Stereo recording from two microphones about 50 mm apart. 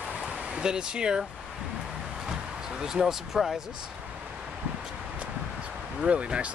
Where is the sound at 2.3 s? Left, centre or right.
Centre.